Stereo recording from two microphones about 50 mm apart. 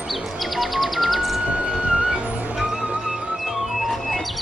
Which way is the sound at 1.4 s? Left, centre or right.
Right.